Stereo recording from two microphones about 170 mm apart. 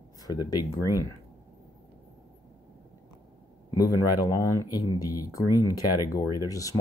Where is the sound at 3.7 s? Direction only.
20° left (ahead or behind).